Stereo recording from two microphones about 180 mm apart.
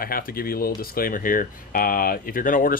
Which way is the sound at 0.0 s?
55° left (ahead or behind).